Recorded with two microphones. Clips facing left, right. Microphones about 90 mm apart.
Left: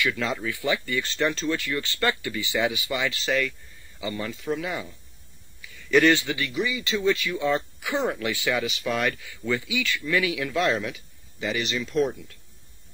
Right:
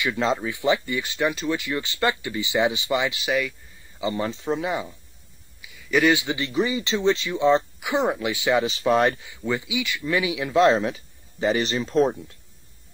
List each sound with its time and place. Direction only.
0.0 s speech: 25° right (ahead or behind)
4.0 s speech: 25° right (ahead or behind)
5.6 s a sound: 10° right (ahead or behind)
6.2 s speech: 25° right (ahead or behind)
9.3 s speech: 20° right (ahead or behind)